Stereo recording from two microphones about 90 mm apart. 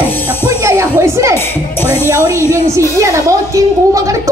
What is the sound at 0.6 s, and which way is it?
Music, 35° right (ahead or behind).